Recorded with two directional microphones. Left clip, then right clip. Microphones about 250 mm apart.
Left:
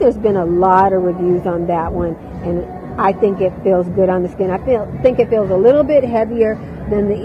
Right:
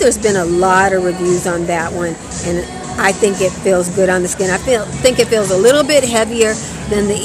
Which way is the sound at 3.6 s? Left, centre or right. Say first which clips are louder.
Right 1 dB; right.